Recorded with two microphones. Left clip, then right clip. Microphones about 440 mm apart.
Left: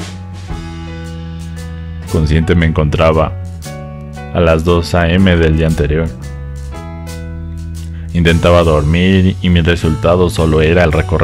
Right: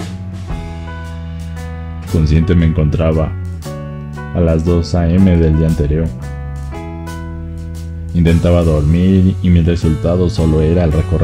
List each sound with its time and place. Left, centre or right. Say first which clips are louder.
2.2 s speech: left 2 dB; centre
4.4 s speech: left 5 dB; left
8.1 s speech: left 5 dB; centre